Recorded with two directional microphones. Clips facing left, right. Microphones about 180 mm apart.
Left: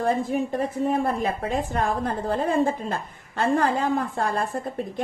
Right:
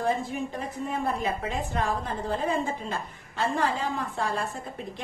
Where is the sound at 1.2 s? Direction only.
50° left (ahead or behind).